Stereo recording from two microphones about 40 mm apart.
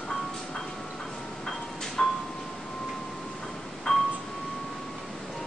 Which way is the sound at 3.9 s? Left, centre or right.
Centre.